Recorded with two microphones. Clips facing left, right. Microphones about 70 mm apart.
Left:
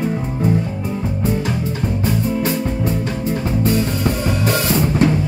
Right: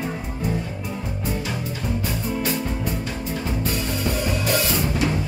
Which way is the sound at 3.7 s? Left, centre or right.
Left.